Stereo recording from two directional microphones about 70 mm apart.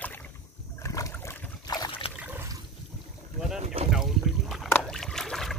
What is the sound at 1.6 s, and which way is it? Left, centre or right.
Boat, left.